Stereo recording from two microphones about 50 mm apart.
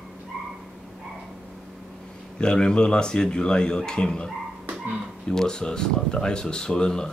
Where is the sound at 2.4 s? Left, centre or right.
Centre.